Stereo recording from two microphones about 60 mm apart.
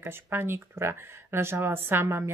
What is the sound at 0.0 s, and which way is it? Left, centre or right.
Speech, right.